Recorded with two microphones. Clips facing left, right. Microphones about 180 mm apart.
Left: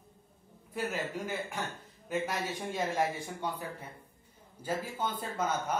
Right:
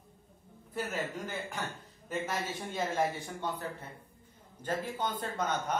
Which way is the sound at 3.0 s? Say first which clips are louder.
Even; 10° left (ahead or behind).